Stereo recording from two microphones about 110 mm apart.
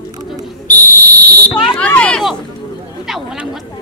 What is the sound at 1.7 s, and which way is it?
Speech, 10° left (ahead or behind).